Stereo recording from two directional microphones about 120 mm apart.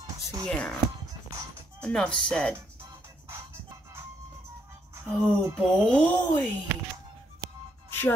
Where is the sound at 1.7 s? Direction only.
10° left (ahead or behind).